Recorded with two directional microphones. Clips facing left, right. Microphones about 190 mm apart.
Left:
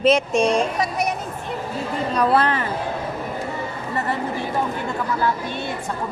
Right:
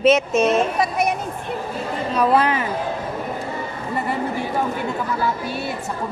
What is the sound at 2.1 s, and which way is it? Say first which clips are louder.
Speech: right 1 dB; 10° right (ahead or behind).